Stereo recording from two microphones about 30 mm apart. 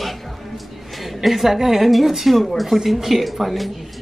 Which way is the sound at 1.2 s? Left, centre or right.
Centre.